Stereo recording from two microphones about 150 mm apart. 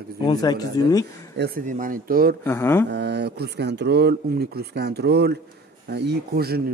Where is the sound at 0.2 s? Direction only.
25° left (ahead or behind).